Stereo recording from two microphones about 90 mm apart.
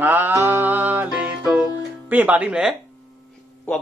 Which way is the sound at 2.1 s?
20° right (ahead or behind).